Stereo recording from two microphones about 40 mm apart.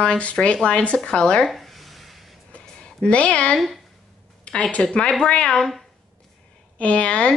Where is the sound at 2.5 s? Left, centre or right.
Left.